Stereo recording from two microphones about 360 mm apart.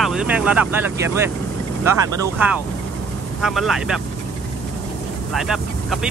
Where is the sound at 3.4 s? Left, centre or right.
Centre.